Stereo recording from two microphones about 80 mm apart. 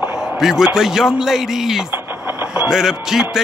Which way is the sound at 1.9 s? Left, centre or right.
Right.